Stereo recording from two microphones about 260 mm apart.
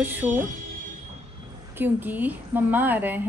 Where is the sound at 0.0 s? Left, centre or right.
Centre.